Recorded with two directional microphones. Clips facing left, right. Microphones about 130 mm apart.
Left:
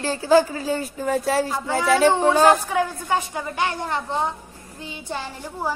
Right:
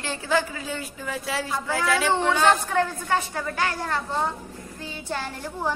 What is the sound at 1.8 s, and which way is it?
Speech, 35° left (ahead or behind).